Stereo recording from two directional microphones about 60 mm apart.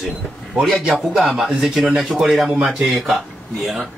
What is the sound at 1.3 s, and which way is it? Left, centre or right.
Speech, centre.